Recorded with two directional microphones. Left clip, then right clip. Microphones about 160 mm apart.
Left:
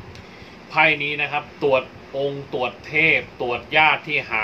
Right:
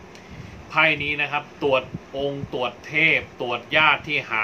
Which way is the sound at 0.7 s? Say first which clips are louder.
Left 2 dB; 25° right (ahead or behind).